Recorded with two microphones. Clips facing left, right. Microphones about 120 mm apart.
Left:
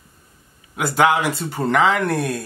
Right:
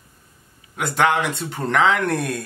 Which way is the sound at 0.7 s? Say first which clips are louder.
Left 2 dB; 5° left (ahead or behind).